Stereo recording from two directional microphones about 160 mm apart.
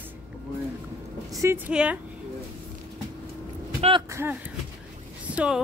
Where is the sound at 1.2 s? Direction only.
20° right (ahead or behind).